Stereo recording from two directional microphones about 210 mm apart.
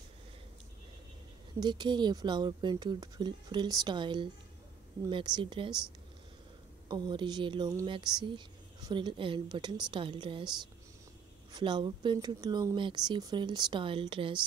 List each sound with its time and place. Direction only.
1.6 s speech: 20° right (ahead or behind)
6.9 s speech: 20° right (ahead or behind)
11.5 s speech: 20° right (ahead or behind)